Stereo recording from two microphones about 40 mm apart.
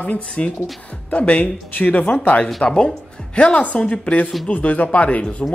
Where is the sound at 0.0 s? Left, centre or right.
Left.